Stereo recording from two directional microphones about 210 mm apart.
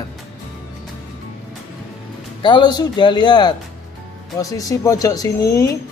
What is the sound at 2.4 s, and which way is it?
A man's voice, 20° left (ahead or behind).